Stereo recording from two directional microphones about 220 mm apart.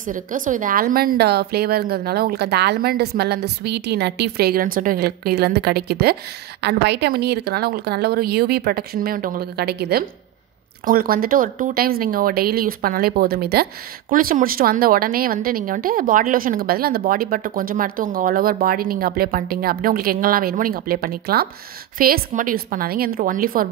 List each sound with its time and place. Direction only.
0.0 s a woman's voice: 35° right (ahead or behind)